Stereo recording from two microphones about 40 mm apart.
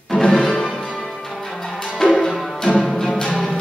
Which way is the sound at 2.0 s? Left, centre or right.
Centre.